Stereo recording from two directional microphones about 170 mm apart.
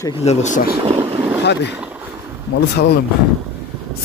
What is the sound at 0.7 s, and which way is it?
Vehicle, 35° right (ahead or behind).